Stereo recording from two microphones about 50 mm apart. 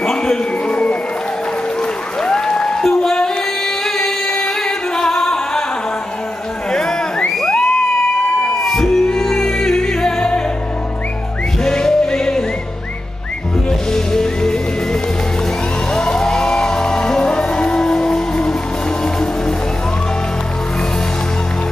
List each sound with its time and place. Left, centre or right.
0.0 s a sound: centre
2.2 s music: centre
3.8 s singing: centre
4.4 s music: centre
6.7 s a sound: centre
7.2 s crowd: centre
7.5 s music: centre
8.5 s music: centre
11.6 s music: centre
13.7 s music: centre